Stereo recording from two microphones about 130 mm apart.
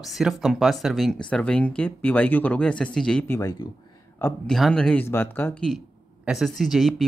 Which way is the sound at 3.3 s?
25° left (ahead or behind).